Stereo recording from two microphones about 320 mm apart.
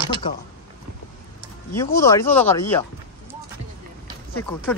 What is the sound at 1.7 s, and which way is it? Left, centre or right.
Speech, centre.